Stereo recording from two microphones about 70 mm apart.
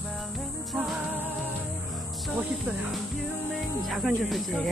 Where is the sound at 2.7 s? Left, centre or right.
Right.